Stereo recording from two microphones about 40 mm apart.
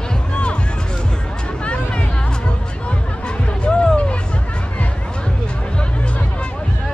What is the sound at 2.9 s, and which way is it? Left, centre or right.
Music, left.